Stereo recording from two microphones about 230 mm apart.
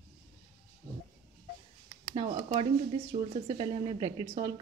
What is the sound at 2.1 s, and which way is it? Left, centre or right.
A woman's voice, right.